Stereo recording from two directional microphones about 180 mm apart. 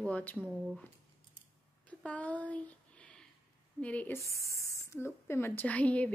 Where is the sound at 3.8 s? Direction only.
10° left (ahead or behind).